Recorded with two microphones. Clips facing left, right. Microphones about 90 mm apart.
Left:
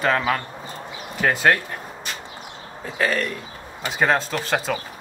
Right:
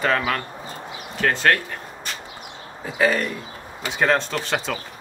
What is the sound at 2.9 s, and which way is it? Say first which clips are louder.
Speech: right 2 dB; 5° right (ahead or behind).